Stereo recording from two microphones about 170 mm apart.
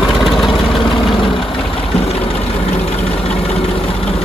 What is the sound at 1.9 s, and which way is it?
Vehicle, 35° left (ahead or behind).